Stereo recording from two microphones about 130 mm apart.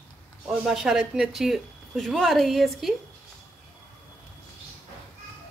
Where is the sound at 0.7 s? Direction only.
5° right (ahead or behind).